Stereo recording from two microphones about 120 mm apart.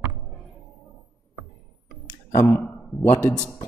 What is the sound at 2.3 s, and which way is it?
Speech, 20° left (ahead or behind).